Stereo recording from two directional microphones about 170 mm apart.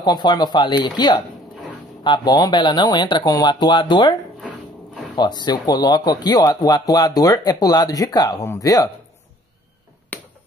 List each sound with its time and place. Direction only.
0.0 s speech: 25° left (ahead or behind)
5.1 s speech: 25° left (ahead or behind)
10.1 s a sound: 10° left (ahead or behind)